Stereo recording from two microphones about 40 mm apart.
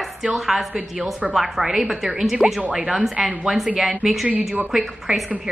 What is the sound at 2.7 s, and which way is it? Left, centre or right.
A woman's voice, centre.